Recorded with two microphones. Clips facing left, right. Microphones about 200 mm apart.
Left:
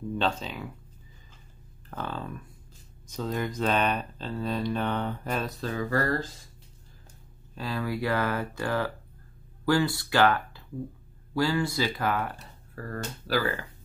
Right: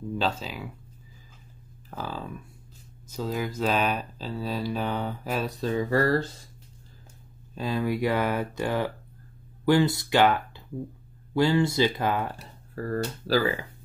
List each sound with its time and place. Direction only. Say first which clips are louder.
0.2 s speech: even; 5° right (ahead or behind)
1.9 s speech: even; 5° right (ahead or behind)
5.7 s speech: right 6 dB; 25° right (ahead or behind)
7.5 s speech: right 4 dB; 20° right (ahead or behind)
12.7 s speech: right 7 dB; 35° right (ahead or behind)
13.4 s speech: right 1 dB; 15° right (ahead or behind)